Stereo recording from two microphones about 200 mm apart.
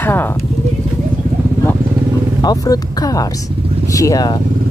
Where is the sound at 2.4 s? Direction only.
20° left (ahead or behind).